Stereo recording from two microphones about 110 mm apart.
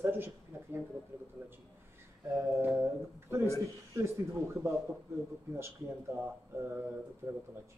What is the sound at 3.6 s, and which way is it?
Speech, 25° right (ahead or behind).